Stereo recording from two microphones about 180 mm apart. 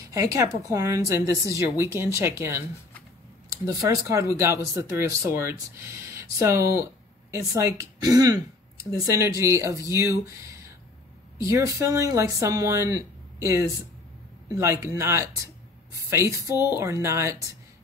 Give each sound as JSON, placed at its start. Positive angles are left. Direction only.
{"t": 0.1, "sound": "speech", "side_deg": -15}
{"t": 3.6, "sound": "speech", "side_deg": -20}